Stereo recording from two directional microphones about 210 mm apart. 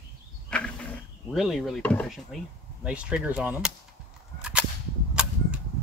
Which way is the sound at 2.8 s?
5° right (ahead or behind).